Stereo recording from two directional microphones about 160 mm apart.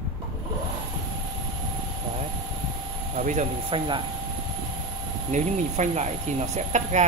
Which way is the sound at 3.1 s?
50° right (ahead or behind).